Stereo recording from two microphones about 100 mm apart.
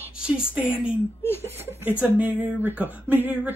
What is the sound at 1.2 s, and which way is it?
Speech, 20° left (ahead or behind).